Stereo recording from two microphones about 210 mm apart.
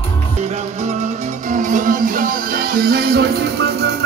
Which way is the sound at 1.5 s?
35° right (ahead or behind).